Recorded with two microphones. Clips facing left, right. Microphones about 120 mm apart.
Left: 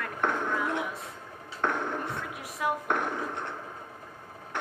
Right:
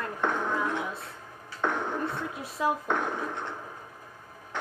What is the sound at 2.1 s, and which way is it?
Speech, 25° right (ahead or behind).